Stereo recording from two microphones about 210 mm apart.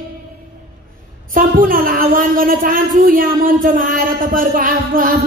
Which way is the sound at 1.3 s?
40° right (ahead or behind).